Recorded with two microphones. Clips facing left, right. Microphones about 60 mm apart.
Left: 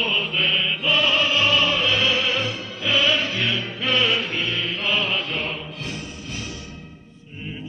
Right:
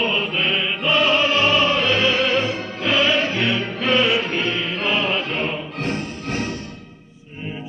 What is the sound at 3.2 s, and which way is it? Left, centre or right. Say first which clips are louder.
Music: right 4 dB; right.